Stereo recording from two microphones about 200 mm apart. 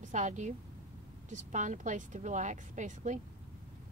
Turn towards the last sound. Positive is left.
turn(degrees=-35)  # may be behind; listen again after turning